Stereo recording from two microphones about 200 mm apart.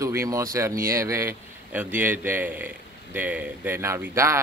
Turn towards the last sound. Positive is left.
turn(degrees=-15)  # may be behind; listen again after turning